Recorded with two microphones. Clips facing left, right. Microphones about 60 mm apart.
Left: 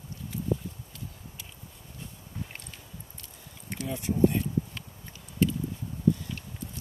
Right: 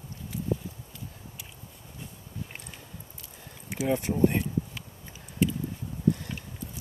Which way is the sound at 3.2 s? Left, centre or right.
Centre.